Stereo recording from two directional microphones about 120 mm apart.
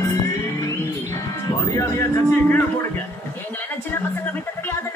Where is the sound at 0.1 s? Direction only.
25° left (ahead or behind).